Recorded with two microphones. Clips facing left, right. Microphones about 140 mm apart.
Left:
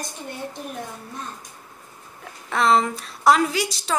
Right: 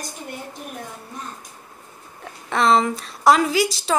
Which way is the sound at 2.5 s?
Centre (ahead or behind).